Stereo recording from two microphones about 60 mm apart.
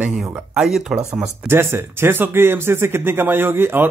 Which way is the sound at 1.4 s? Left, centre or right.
Right.